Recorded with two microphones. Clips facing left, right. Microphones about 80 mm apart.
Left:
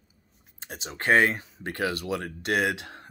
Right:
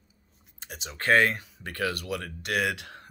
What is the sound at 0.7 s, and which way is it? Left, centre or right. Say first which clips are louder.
Speech: left 3 dB; left.